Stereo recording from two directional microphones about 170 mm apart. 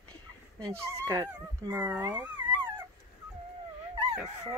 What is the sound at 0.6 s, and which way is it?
Speech, 20° right (ahead or behind).